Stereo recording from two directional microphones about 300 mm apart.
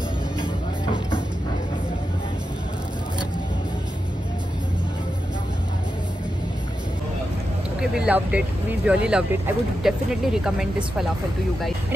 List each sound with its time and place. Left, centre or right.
7.8 s speech: centre